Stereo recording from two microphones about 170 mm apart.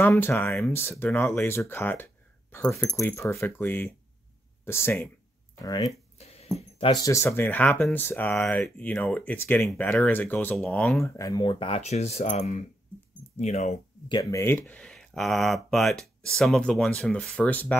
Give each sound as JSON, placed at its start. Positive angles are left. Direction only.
{"t": 0.0, "sound": "speech", "side_deg": 15}
{"t": 7.1, "sound": "speech", "side_deg": 15}
{"t": 11.1, "sound": "speech", "side_deg": 20}
{"t": 14.0, "sound": "speech", "side_deg": 25}
{"t": 14.4, "sound": "speech", "side_deg": 15}
{"t": 14.8, "sound": "speech", "side_deg": 0}